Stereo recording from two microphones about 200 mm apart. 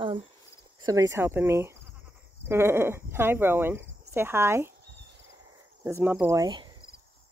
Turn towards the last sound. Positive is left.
turn(degrees=-20)  # may be behind; listen again after turning